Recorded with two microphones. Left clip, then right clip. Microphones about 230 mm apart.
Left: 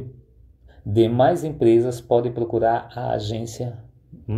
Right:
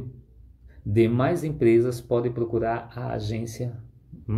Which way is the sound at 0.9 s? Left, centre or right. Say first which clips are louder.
Left 5 dB; centre.